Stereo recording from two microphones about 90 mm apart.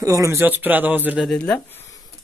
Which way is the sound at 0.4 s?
20° right (ahead or behind).